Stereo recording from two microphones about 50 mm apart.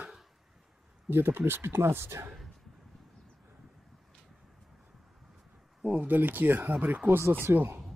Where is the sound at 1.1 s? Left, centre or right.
Right.